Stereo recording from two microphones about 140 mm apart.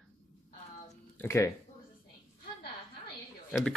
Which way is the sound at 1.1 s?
20° left (ahead or behind).